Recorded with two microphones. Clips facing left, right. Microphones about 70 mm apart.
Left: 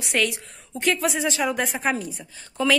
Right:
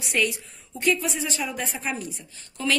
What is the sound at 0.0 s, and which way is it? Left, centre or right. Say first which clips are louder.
A woman's voice: left 1 dB; left.